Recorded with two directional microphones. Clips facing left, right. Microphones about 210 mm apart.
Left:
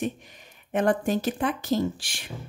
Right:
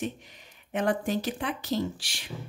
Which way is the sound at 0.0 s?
50° left (ahead or behind).